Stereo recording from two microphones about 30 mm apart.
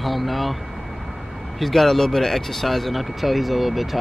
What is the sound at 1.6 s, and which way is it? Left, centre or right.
Speech, centre.